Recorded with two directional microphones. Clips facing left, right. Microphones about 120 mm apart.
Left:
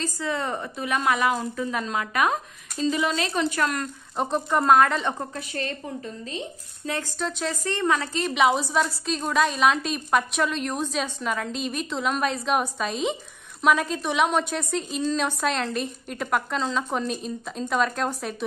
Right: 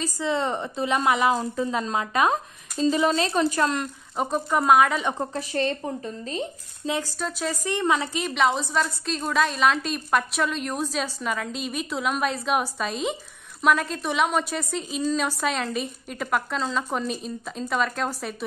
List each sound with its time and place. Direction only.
0.2 s a woman's voice: 20° right (ahead or behind)
4.2 s a woman's voice: 5° right (ahead or behind)
5.3 s a woman's voice: 30° right (ahead or behind)
7.2 s a woman's voice: 5° right (ahead or behind)
7.6 s a woman's voice: 15° right (ahead or behind)
8.4 s a woman's voice: 5° left (ahead or behind)